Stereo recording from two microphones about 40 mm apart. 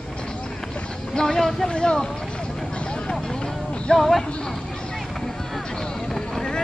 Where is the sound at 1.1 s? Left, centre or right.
Centre.